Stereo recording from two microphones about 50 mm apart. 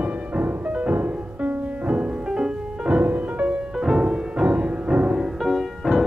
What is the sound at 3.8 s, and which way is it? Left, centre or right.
Music, centre.